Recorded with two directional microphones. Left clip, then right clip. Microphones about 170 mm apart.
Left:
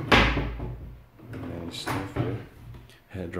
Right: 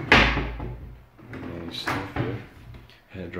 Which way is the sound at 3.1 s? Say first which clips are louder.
Left 1 dB; 25° left (ahead or behind).